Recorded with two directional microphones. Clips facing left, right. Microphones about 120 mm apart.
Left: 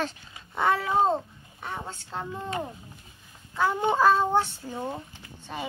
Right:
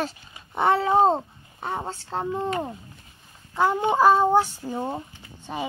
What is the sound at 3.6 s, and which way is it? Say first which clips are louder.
Speech: right 3 dB; 20° right (ahead or behind).